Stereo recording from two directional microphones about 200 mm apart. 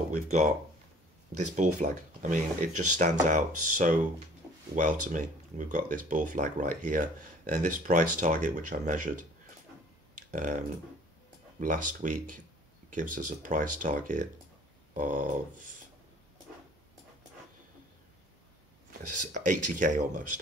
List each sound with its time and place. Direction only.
0.1 s speech: 35° right (ahead or behind)
11.6 s speech: 40° right (ahead or behind)
19.0 s speech: 40° right (ahead or behind)